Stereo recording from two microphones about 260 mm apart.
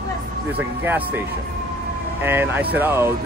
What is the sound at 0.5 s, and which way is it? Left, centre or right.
Speech, centre.